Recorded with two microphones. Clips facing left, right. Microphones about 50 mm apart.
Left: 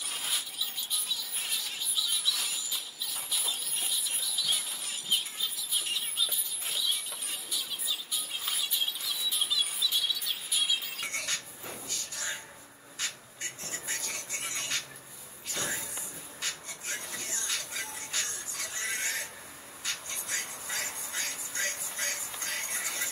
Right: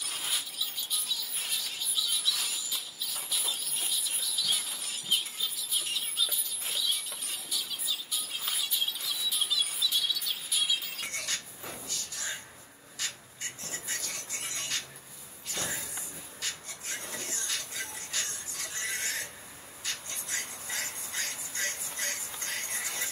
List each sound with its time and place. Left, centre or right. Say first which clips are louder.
0.0 s music: even; centre
11.1 s music: left 2 dB; left
11.9 s cupboard open or close: left 2 dB; left
13.0 s a sound: left 1 dB; left
16.3 s rub: left 1 dB; left
17.2 s music: left 1 dB; left
19.8 s a sound: left 1 dB; left